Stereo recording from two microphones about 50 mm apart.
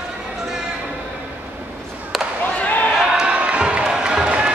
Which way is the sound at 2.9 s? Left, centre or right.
Centre.